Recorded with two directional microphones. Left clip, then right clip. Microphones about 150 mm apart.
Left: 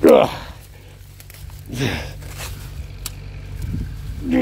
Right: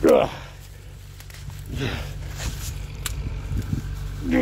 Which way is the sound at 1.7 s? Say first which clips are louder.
Left 6 dB; 75° left (ahead or behind).